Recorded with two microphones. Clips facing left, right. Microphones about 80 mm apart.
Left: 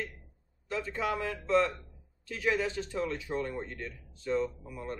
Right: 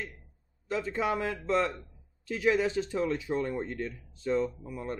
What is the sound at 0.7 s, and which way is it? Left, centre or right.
Speech, centre.